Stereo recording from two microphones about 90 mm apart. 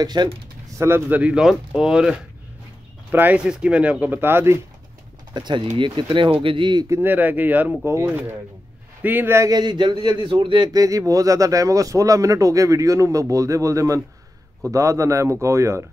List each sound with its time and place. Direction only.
0.0 s speech: 50° right (ahead or behind)
0.7 s speech: 25° right (ahead or behind); by 2.1 s 10° right (ahead or behind)
3.1 s speech: 20° right (ahead or behind)
5.3 s speech: 60° right (ahead or behind)
6.9 s speech: 20° right (ahead or behind)
9.5 s speech: 50° right (ahead or behind); by 10.7 s 70° right (ahead or behind)
10.7 s speech: 40° right (ahead or behind)